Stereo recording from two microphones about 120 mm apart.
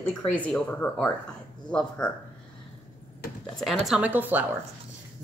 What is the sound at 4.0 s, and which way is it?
Speech, 15° right (ahead or behind).